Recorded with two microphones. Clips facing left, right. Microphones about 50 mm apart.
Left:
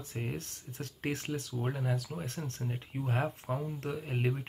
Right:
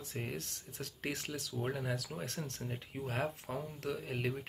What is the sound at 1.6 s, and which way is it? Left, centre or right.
Speech, centre.